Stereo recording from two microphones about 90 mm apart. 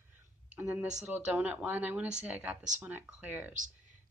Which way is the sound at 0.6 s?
10° right (ahead or behind).